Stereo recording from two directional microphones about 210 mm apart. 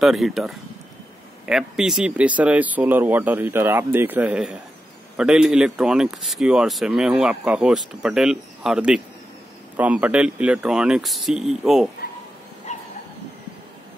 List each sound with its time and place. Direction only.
0.0 s speech: centre (ahead or behind)
12.7 s dog: 35° left (ahead or behind)